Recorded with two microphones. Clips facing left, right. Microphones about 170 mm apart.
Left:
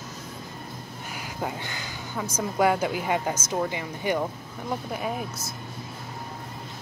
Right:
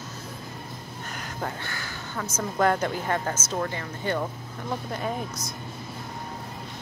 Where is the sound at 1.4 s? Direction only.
15° left (ahead or behind).